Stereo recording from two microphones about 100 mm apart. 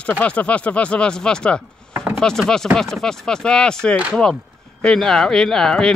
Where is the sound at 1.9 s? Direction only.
25° right (ahead or behind).